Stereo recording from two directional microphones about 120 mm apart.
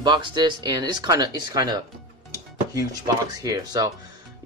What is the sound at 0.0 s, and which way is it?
Speech, 40° right (ahead or behind).